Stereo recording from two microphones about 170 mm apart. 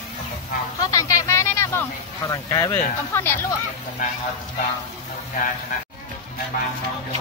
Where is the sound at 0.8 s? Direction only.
20° left (ahead or behind).